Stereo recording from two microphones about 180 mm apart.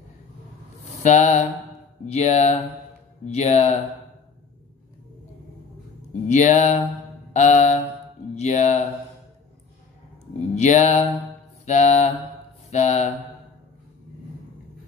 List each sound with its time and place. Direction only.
1.0 s mantra: 40° left (ahead or behind)
6.2 s mantra: 40° left (ahead or behind)
10.5 s mantra: 40° left (ahead or behind)